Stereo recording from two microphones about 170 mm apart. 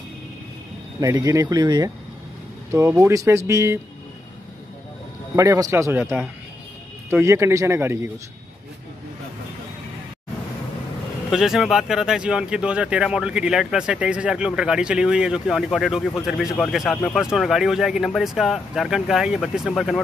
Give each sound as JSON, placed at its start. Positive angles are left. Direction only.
{"t": 1.0, "sound": "speech", "side_deg": -20}
{"t": 5.3, "sound": "speech", "side_deg": -20}
{"t": 11.2, "sound": "speech", "side_deg": 0}